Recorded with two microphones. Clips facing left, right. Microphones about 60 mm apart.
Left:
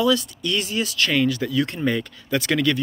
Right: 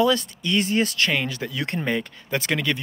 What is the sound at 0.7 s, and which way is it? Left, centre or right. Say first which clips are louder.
Speech: right 2 dB; right.